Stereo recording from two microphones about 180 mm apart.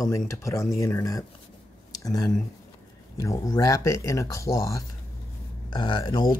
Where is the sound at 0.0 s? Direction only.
15° left (ahead or behind).